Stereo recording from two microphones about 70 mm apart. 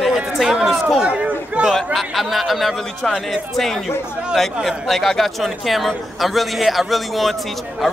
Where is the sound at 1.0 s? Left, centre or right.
Centre.